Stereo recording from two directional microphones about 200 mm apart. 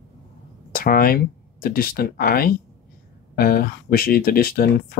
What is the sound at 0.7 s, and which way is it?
Speech, 45° left (ahead or behind).